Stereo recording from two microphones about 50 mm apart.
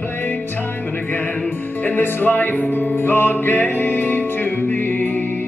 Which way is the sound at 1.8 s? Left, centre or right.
Left.